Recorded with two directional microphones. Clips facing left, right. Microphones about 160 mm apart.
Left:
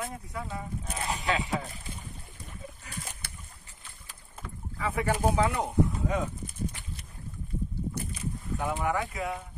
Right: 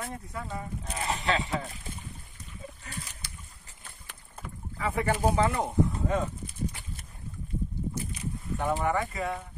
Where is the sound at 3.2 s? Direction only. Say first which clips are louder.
Even; 60° left (ahead or behind).